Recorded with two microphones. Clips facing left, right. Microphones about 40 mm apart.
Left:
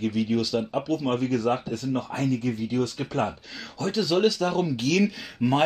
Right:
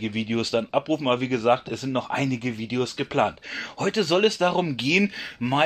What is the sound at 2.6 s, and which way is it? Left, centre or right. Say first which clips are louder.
Speech: even; right.